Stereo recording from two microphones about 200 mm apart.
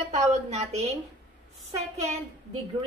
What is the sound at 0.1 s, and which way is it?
Speech, 35° right (ahead or behind).